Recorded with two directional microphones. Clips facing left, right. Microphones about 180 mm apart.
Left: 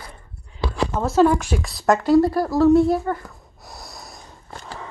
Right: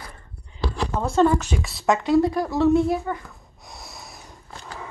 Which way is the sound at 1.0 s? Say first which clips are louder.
Left 2 dB; 5° left (ahead or behind).